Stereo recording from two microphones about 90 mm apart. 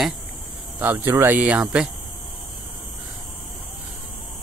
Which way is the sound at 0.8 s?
20° right (ahead or behind).